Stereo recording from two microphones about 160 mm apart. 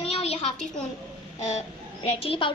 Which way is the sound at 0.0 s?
40° left (ahead or behind).